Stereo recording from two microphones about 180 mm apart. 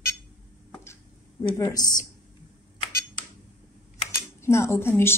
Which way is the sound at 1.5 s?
20° left (ahead or behind).